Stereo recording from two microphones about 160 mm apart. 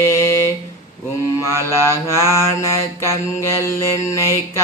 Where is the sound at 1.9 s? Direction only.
15° left (ahead or behind).